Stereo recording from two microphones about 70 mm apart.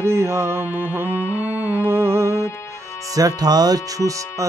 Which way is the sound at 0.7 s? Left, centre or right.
Right.